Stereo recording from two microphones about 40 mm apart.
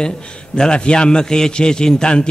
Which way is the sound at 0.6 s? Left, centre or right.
Left.